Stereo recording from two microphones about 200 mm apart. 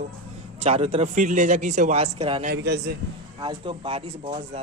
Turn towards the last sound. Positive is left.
turn(degrees=-30)  # may be behind; listen again after turning